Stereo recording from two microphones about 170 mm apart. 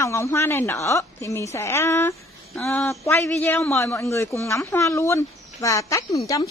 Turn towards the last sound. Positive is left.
turn(degrees=20)  # may be behind; listen again after turning